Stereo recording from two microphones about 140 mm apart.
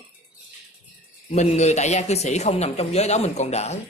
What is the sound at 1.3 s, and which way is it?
Speech, 55° left (ahead or behind).